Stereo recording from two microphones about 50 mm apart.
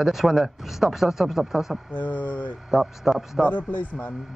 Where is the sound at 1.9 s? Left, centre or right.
Left.